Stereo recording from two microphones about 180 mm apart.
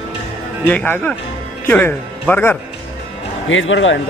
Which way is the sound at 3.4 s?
90° left.